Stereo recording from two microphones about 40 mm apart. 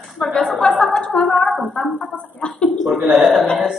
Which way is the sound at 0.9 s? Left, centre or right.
Centre.